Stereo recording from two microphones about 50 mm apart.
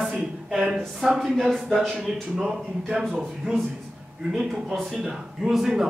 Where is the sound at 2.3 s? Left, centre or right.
Centre.